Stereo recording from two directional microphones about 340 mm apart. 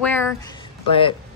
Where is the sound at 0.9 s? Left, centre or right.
Centre.